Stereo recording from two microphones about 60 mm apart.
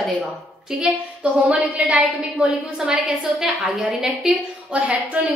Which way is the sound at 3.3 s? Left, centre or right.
Centre.